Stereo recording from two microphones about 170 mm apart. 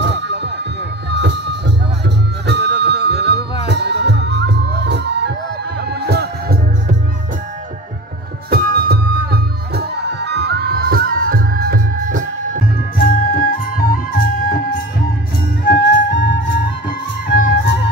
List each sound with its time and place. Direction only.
0.0 s music: 90° right
5.8 s music: 70° right (ahead or behind)
8.5 s music: 65° right (ahead or behind)
12.9 s music: 55° left (ahead or behind)
15.6 s music: 90° left